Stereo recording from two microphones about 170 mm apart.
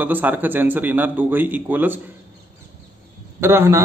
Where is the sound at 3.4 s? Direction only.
15° right (ahead or behind).